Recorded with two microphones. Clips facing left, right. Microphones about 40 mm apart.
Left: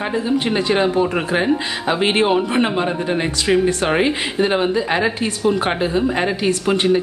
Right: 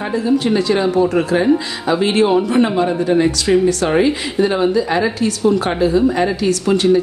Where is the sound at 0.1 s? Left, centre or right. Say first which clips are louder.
Right 6 dB; left.